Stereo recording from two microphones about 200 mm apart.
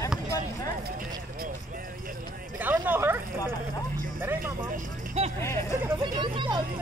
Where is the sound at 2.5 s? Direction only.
10° right (ahead or behind).